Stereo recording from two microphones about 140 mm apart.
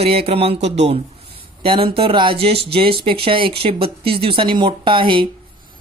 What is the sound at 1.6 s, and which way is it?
Speech, 40° right (ahead or behind).